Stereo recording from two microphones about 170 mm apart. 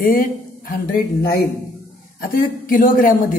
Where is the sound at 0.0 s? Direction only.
55° left (ahead or behind).